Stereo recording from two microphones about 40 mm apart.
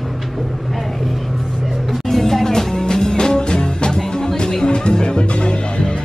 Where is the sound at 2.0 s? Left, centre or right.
Centre.